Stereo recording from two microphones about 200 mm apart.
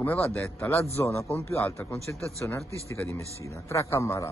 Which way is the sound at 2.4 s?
10° left (ahead or behind).